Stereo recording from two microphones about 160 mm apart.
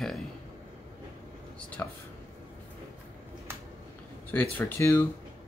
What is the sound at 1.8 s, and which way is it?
Speech, 15° left (ahead or behind).